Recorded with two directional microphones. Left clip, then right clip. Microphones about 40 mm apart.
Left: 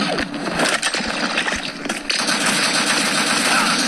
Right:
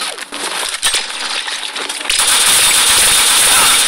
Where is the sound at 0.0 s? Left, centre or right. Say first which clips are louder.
Even; right.